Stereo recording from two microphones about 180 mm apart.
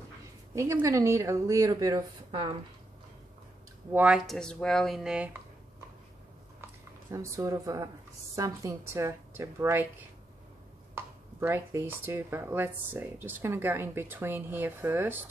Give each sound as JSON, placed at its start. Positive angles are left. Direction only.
{"t": 0.6, "sound": "speech", "side_deg": -15}
{"t": 3.9, "sound": "speech", "side_deg": -5}
{"t": 7.1, "sound": "speech", "side_deg": -15}
{"t": 11.0, "sound": "speech", "side_deg": -15}